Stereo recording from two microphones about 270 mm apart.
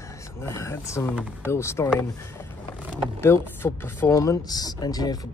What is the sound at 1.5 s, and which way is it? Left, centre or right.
Speech, centre.